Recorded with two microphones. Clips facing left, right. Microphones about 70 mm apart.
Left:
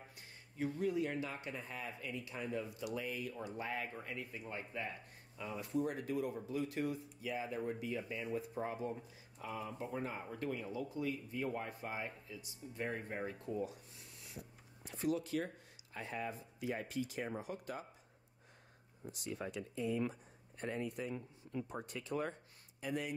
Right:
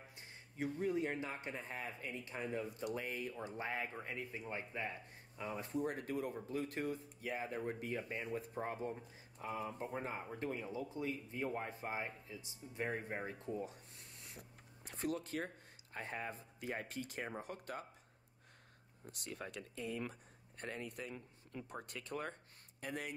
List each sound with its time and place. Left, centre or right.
0.6 s speech: right
3.4 s speech: right
5.6 s speech: right
9.4 s speech: right
12.8 s speech: centre
13.7 s a sound: right
16.9 s speech: right
19.4 s speech: right
19.8 s speech: left
21.8 s speech: right